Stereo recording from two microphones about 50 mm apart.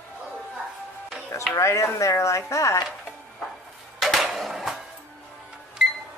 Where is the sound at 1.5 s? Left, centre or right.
Left.